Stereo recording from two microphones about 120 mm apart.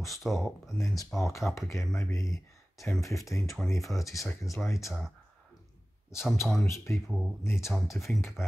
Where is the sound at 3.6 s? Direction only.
5° right (ahead or behind).